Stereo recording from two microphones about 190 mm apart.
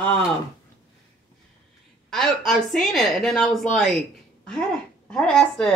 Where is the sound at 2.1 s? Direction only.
Centre (ahead or behind).